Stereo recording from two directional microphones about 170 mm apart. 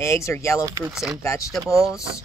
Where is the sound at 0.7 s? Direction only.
20° right (ahead or behind).